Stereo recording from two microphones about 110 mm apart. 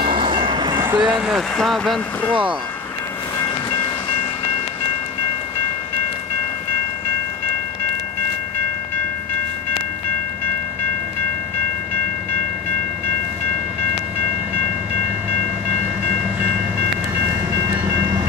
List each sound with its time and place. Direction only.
0.0 s train: 50° right (ahead or behind)
0.9 s speech: 10° right (ahead or behind)
3.4 s train: 35° left (ahead or behind)